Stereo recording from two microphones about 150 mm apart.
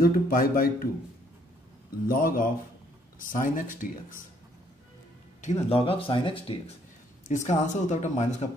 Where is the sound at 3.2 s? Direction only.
65° left (ahead or behind).